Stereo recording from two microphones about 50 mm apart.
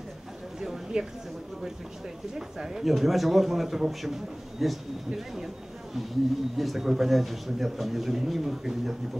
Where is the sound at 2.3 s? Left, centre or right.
Centre.